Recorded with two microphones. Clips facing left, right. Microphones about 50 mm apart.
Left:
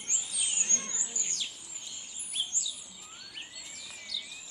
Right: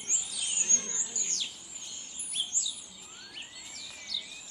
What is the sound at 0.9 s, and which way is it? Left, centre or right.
Bird, centre.